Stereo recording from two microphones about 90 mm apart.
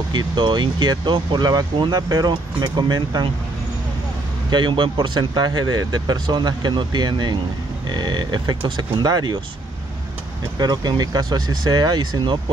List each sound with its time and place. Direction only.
0.1 s speech: 55° right (ahead or behind)
4.5 s speech: 60° right (ahead or behind)
9.0 s speech: 50° right (ahead or behind)
10.6 s speech: 50° right (ahead or behind)